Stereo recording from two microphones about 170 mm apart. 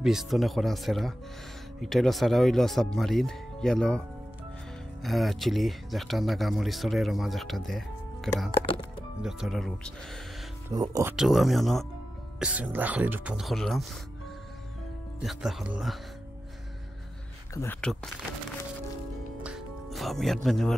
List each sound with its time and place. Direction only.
0.0 s speech: centre (ahead or behind)
5.0 s speech: centre (ahead or behind)
8.5 s music: 30° left (ahead or behind)
9.2 s speech: centre (ahead or behind)
10.7 s speech: 20° right (ahead or behind)
11.1 s speech: centre (ahead or behind)
15.2 s speech: centre (ahead or behind)
17.6 s speech: 10° left (ahead or behind)
19.4 s music: centre (ahead or behind)